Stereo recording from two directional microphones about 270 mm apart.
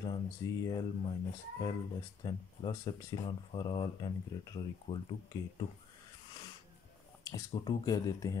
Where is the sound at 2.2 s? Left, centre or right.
Centre.